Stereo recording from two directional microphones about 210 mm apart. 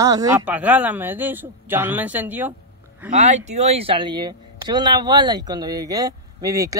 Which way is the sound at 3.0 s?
35° right (ahead or behind).